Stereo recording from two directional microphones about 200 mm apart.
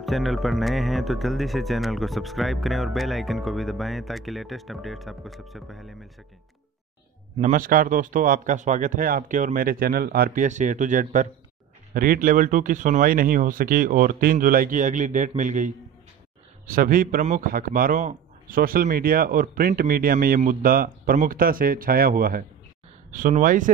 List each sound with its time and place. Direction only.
0.0 s speech: centre (ahead or behind)
7.3 s a man's voice: 40° right (ahead or behind)